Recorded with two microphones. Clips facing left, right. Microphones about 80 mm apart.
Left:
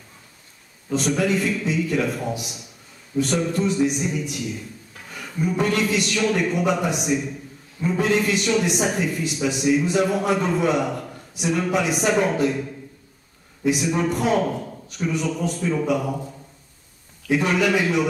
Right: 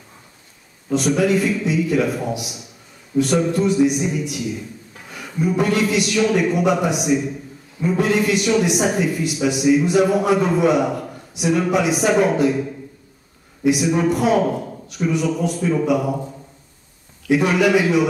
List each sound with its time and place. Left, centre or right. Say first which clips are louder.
0.9 s a man's voice: right 4 dB; centre
17.3 s a man's voice: right 4 dB; centre